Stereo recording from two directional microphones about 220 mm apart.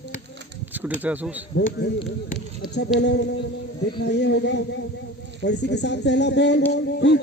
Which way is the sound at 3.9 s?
50° left (ahead or behind).